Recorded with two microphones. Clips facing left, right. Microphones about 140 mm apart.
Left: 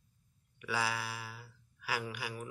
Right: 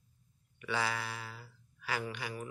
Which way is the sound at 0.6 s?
5° left (ahead or behind).